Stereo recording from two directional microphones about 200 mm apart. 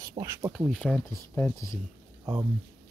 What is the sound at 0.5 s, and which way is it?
Speech, centre (ahead or behind).